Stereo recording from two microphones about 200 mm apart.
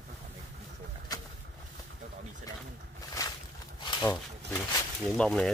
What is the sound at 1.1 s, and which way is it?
Vehicle, 20° left (ahead or behind).